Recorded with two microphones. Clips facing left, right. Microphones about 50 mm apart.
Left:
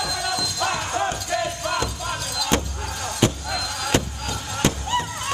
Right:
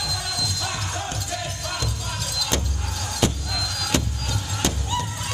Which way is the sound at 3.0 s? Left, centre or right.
Centre.